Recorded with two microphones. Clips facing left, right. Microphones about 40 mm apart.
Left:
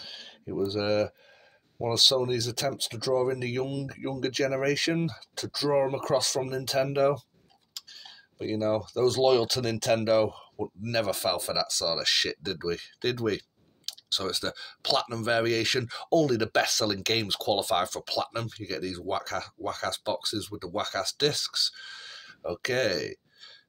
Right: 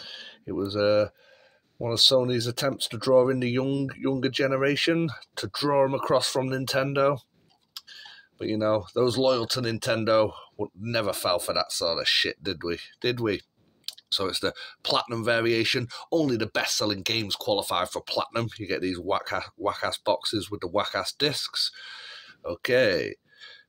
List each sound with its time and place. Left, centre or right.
0.0 s a sound: centre
1.9 s speech: centre
2.2 s speech: right
7.9 s a sound: right
9.6 s speech: centre
10.0 s speech: right
10.6 s speech: centre